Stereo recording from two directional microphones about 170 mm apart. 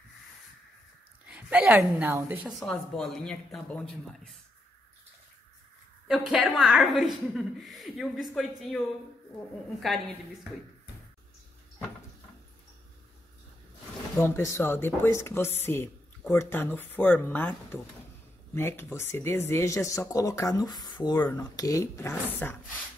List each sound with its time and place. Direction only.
1.3 s a woman's voice: 10° right (ahead or behind)
2.6 s a woman's voice: 5° left (ahead or behind)
6.0 s a woman's voice: centre (ahead or behind)
14.1 s speech: 15° left (ahead or behind)